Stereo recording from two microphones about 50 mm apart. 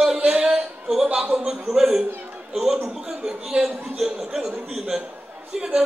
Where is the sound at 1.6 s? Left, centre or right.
Centre.